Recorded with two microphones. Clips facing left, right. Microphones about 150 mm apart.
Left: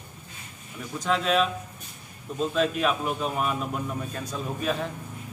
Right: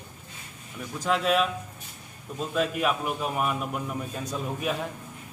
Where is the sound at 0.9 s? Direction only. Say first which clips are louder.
Even; 5° right (ahead or behind).